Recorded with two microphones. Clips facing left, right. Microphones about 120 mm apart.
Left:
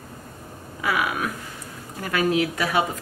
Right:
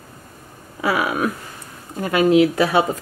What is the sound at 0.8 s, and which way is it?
A woman's voice, 30° right (ahead or behind).